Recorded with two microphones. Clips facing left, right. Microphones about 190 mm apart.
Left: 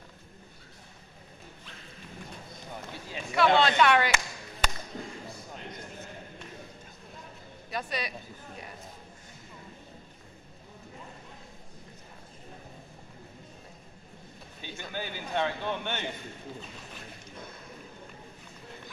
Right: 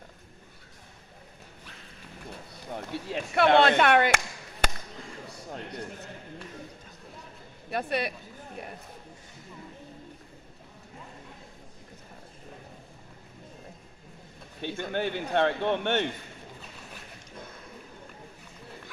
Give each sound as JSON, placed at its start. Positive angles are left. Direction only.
{"t": 2.5, "sound": "speech", "side_deg": -70}
{"t": 5.7, "sound": "a sound", "side_deg": -70}
{"t": 7.7, "sound": "speech", "side_deg": -60}
{"t": 14.6, "sound": "speech", "side_deg": -60}